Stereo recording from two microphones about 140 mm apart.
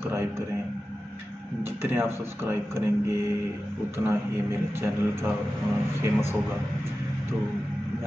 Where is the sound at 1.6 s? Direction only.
15° right (ahead or behind).